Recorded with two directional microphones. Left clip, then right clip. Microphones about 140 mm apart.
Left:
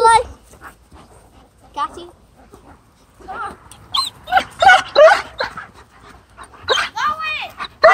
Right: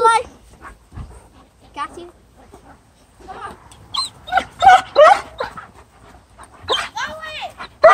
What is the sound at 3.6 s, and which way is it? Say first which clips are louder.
Dog: left 3 dB; 40° left (ahead or behind).